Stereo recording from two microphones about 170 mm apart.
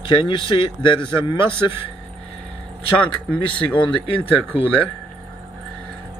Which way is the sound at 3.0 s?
10° left (ahead or behind).